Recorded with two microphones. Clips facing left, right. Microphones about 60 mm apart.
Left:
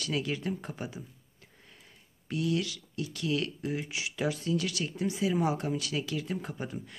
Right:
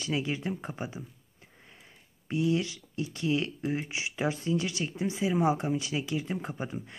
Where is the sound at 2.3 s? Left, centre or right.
Right.